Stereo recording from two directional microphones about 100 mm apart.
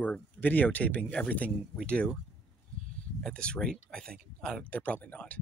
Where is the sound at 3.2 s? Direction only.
10° left (ahead or behind).